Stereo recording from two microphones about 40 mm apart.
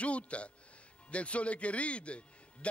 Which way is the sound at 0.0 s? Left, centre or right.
Left.